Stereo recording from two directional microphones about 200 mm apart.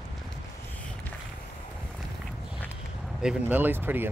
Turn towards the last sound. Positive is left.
turn(degrees=-10)  # may be behind; listen again after turning